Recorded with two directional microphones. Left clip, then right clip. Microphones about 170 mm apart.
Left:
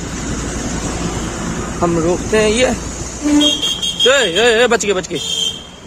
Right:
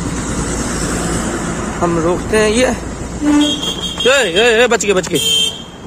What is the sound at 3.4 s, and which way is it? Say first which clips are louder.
Vehicle: left 2 dB; 50° left (ahead or behind).